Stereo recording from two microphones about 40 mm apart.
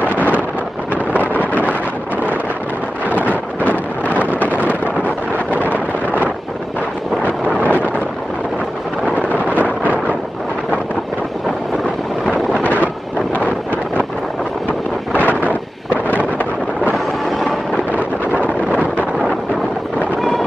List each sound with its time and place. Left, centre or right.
1.3 s wind noise: left
5.6 s vehicle: left
7.6 s vehicle: left
9.3 s vehicle: left
14.7 s wind noise: left
16.9 s a sound: centre
18.7 s wind noise: left
20.2 s vehicle: centre